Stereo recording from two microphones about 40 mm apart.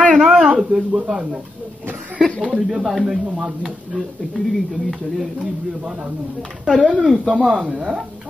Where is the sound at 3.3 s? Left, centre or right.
Right.